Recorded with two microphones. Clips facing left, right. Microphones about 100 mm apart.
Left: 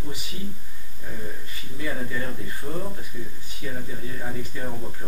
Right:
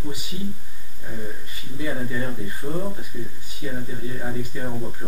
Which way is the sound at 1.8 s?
15° right (ahead or behind).